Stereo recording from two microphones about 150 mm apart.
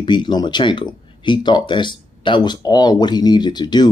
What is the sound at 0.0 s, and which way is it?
Speech, 30° left (ahead or behind).